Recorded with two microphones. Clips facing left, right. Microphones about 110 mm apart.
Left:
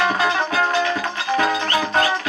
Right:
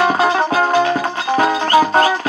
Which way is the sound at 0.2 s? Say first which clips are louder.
Right 5 dB; 40° right (ahead or behind).